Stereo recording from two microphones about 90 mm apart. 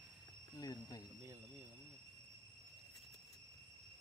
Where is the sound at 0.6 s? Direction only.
45° left (ahead or behind).